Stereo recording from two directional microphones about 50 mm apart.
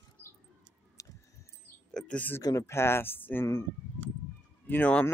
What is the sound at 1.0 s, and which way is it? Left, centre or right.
Keys jangling, left.